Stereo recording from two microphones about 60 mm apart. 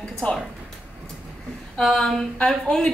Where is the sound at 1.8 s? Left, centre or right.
Centre.